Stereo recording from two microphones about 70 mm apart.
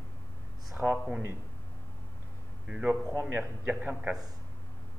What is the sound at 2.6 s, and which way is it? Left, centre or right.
Speech, centre.